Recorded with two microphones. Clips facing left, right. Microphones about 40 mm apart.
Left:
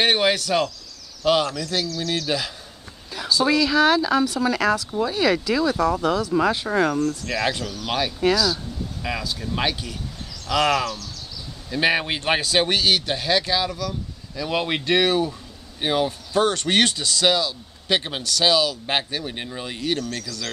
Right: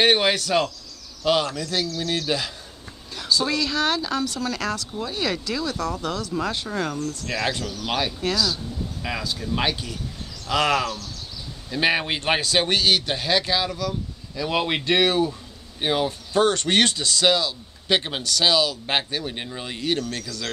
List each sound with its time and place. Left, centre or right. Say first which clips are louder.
0.0 s speech: even; centre
6.7 s speech: left 6 dB; centre
7.2 s speech: left 2 dB; centre